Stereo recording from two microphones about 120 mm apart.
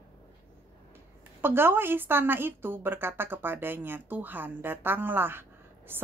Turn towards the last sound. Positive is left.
turn(degrees=-20)  # may be behind; listen again after turning